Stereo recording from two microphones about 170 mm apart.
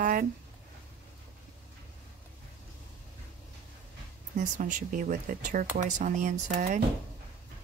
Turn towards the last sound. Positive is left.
turn(degrees=-50)  # may be behind; listen again after turning